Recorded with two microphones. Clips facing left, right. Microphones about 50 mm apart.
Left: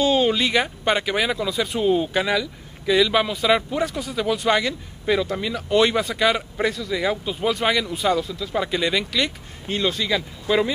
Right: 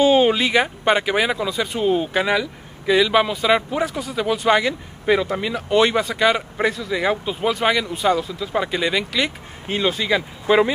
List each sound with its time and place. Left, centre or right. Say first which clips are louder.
0.0 s a sound: right 4 dB; centre
0.4 s speech: right 2 dB; centre
5.7 s speech: right 1 dB; centre
7.4 s speech: right 2 dB; centre
8.3 s speech: right 2 dB; centre